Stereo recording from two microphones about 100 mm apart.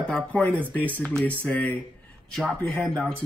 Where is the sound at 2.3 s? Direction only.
Centre (ahead or behind).